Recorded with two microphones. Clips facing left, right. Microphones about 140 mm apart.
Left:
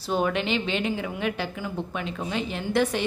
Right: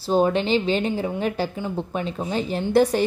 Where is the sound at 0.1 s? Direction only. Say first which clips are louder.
Right 6 dB; 30° right (ahead or behind).